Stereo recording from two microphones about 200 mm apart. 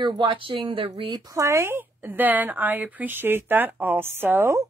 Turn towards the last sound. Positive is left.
turn(degrees=-10)  # may be behind; listen again after turning